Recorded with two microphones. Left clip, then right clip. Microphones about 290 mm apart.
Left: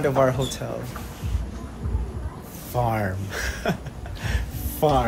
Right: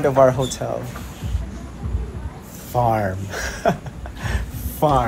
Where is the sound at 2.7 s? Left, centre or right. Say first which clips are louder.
Right 6 dB; centre.